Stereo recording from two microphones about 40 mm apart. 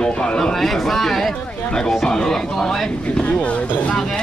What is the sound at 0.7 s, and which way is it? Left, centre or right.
Speech, centre.